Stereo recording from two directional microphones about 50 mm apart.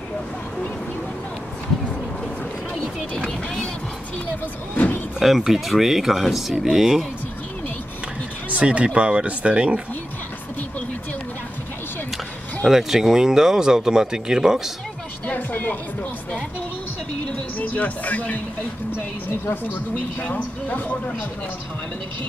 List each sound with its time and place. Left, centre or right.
4.7 s slam: left
5.2 s speech: centre
8.5 s speech: right
12.6 s speech: centre
15.2 s music: left
17.6 s speech: left
18.9 s a woman's voice: left